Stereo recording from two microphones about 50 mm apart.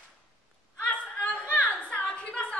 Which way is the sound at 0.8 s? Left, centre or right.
Left.